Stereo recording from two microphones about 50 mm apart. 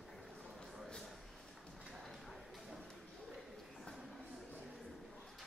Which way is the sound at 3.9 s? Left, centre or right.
Centre.